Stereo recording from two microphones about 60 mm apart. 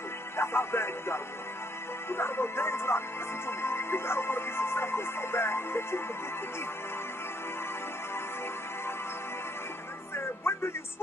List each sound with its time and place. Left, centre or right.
0.4 s music: left
10.1 s music: left